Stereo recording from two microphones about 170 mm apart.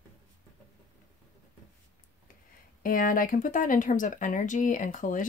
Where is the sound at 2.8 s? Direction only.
55° left (ahead or behind).